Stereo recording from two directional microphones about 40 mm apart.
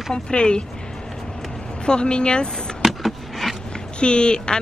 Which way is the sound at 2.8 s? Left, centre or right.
Centre.